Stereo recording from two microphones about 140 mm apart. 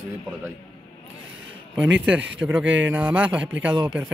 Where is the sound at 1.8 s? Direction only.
10° right (ahead or behind).